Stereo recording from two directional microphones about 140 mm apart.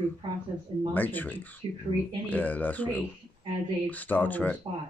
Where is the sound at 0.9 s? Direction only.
10° left (ahead or behind).